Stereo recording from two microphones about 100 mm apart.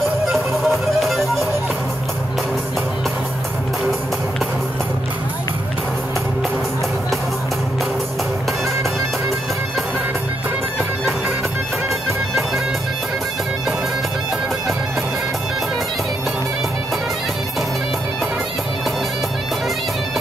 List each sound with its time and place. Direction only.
0.3 s music: centre (ahead or behind)